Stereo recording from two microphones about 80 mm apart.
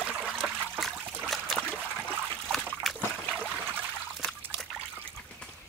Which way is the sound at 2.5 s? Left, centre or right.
Centre.